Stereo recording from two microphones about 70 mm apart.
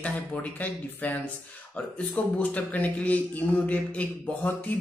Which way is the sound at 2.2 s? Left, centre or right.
Left.